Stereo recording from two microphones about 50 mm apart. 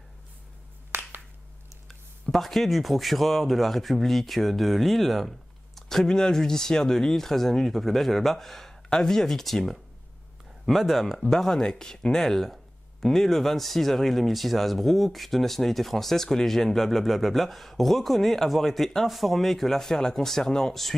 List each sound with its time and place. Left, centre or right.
0.9 s finger snapping: right
2.3 s speech: centre